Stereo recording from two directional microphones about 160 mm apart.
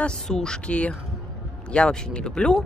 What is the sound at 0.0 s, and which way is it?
Speech, 5° left (ahead or behind).